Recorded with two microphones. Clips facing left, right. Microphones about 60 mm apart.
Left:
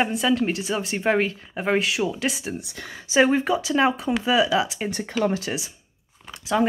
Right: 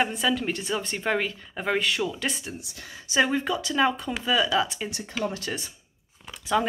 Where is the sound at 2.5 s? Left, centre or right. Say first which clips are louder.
Left 6 dB; left; by 4.8 s centre.